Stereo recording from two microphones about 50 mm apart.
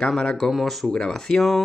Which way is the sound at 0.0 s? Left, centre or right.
Centre.